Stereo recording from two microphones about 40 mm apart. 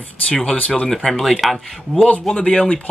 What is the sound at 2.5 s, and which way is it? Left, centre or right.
Speech, left.